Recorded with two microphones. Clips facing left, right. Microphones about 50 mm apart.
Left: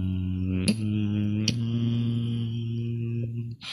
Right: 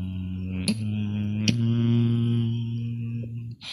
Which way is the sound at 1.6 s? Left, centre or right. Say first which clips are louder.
Right 4 dB; right.